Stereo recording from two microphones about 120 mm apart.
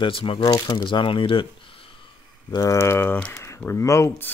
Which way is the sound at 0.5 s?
30° left (ahead or behind).